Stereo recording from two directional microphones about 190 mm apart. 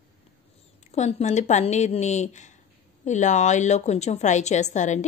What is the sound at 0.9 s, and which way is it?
A woman's voice, 35° left (ahead or behind).